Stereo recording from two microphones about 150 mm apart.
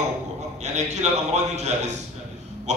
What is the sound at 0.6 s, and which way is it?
A man's voice, 50° right (ahead or behind).